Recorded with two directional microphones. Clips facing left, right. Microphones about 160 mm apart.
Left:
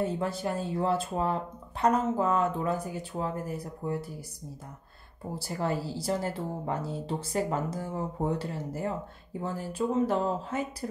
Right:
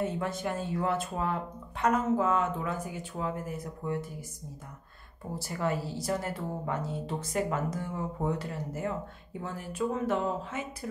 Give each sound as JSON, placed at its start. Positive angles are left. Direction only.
{"t": 0.0, "sound": "speech", "side_deg": 35}
{"t": 5.4, "sound": "speech", "side_deg": 35}